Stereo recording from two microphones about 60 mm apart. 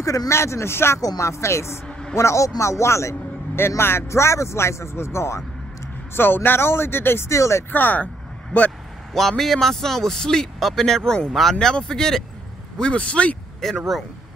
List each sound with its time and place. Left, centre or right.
0.0 s speech: left
0.3 s a man's voice: left
1.9 s a sound: centre
2.1 s a man's voice: left
6.1 s speech: left
7.2 s speech: left
7.7 s speech: left
9.4 s speech: centre; by 13.4 s left
13.6 s speech: centre